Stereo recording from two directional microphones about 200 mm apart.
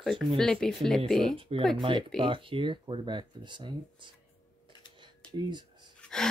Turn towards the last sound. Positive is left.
turn(degrees=5)  # may be behind; listen again after turning